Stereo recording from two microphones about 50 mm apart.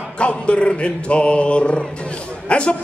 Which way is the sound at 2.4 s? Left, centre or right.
Left.